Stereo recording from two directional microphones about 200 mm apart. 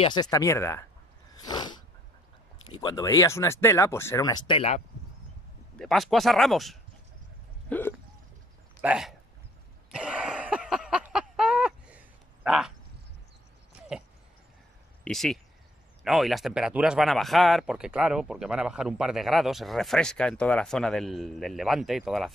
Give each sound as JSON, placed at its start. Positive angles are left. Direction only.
{"t": 0.0, "sound": "speech", "side_deg": 20}
{"t": 1.3, "sound": "sneeze", "side_deg": 20}
{"t": 2.7, "sound": "speech", "side_deg": 20}
{"t": 5.8, "sound": "speech", "side_deg": 0}
{"t": 8.8, "sound": "speech", "side_deg": -5}
{"t": 9.8, "sound": "a sound", "side_deg": -5}
{"t": 13.9, "sound": "a sound", "side_deg": -5}
{"t": 15.0, "sound": "speech", "side_deg": 0}